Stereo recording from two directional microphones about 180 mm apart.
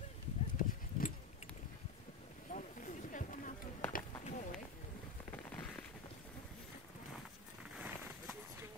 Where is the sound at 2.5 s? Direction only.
45° left (ahead or behind).